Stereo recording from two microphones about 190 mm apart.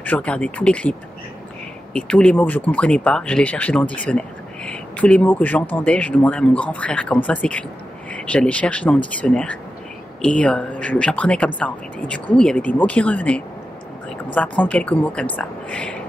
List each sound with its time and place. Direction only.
0.0 s speech: 5° left (ahead or behind)
2.0 s speech: 5° left (ahead or behind)